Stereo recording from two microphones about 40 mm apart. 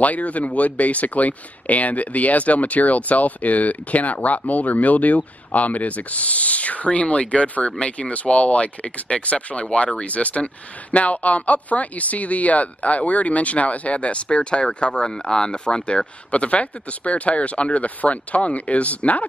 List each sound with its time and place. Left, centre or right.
0.0 s speech: left